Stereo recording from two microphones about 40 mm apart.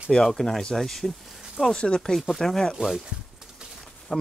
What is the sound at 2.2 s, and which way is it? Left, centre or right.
Speech, centre.